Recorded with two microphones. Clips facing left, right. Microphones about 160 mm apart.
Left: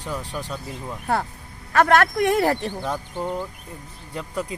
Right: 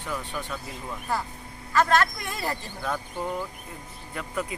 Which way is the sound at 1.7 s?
65° left (ahead or behind).